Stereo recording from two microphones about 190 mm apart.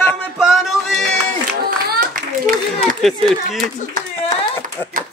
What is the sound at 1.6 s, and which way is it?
Clapping, 45° right (ahead or behind).